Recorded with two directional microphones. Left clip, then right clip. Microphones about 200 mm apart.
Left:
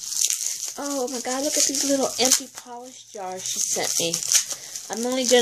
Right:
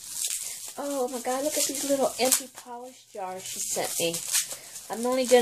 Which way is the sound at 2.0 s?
40° left (ahead or behind).